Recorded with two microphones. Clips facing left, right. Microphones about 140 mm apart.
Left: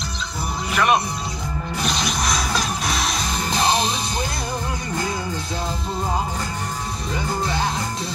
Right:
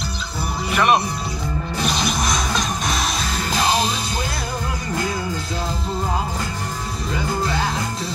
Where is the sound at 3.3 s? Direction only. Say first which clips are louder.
Even; 20° left (ahead or behind).